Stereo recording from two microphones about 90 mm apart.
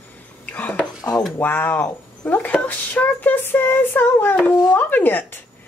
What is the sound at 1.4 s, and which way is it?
A woman's voice, 20° left (ahead or behind).